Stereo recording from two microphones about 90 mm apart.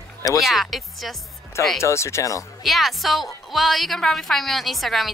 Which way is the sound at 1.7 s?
30° left (ahead or behind).